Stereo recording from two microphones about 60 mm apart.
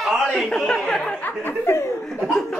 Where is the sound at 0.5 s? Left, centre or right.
Centre.